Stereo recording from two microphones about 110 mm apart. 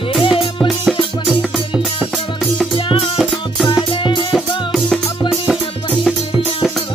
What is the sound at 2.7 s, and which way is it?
Music, 50° left (ahead or behind).